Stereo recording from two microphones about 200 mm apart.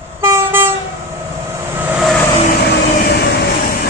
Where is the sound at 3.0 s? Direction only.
55° left (ahead or behind).